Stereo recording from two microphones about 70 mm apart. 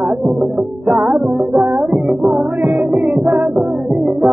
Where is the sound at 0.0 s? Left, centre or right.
Right.